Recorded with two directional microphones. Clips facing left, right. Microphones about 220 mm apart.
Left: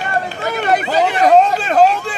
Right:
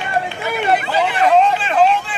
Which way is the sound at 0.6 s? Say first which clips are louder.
Left 2 dB; 40° left (ahead or behind).